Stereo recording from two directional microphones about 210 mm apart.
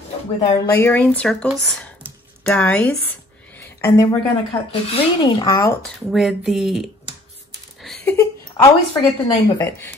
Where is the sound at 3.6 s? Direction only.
10° left (ahead or behind).